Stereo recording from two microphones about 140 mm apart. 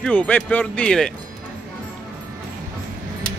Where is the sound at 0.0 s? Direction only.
10° left (ahead or behind).